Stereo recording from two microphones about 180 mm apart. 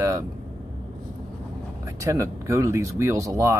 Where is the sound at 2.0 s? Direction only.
15° right (ahead or behind).